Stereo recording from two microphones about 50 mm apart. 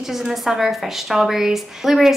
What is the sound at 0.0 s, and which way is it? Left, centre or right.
A woman's voice, centre.